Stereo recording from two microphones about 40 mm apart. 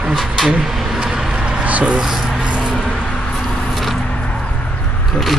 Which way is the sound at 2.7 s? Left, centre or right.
Centre.